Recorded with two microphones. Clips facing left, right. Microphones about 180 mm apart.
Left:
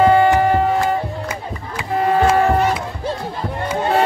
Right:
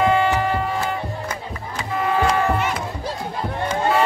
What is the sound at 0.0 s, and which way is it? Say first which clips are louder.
Music: left 6 dB; 45° left (ahead or behind).